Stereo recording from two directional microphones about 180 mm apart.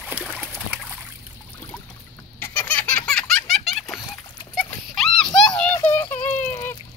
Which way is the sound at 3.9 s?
20° left (ahead or behind).